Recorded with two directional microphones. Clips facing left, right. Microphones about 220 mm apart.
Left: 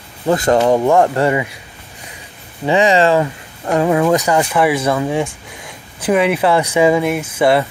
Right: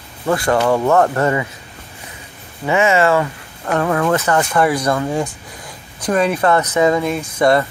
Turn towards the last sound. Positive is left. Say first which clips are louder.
# left 1 dB
turn(degrees=5)  # may be behind; listen again after turning